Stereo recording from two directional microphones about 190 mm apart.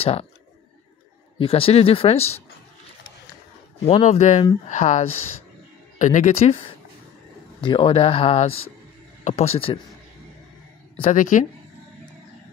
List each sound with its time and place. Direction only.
0.0 s speech: 30° left (ahead or behind)
1.4 s speech: 30° left (ahead or behind)
3.8 s speech: 35° left (ahead or behind)
11.0 s speech: 40° left (ahead or behind)